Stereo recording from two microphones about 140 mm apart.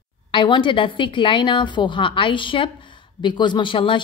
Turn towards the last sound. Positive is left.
turn(degrees=35)  # may be behind; listen again after turning